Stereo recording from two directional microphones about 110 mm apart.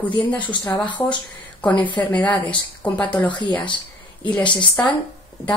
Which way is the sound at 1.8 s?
45° left (ahead or behind).